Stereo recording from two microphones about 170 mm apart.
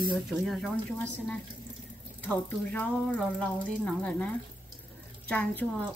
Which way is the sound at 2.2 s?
5° left (ahead or behind).